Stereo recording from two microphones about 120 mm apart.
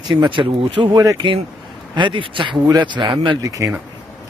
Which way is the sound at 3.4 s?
30° right (ahead or behind).